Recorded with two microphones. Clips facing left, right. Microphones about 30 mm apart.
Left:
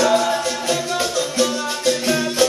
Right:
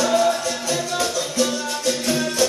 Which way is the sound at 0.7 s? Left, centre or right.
Centre.